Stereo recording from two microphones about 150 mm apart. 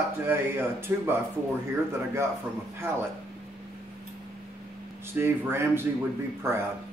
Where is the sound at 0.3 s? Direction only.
15° right (ahead or behind).